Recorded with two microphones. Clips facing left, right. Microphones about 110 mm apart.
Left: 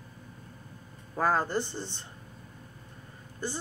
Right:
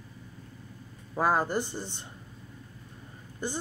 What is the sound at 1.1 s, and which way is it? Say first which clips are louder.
Speech: right 1 dB; 15° right (ahead or behind).